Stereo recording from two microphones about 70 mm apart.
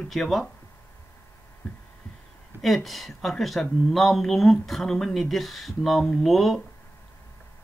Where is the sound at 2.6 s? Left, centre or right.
Centre.